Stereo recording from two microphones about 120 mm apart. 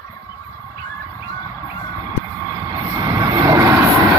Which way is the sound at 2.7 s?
25° right (ahead or behind).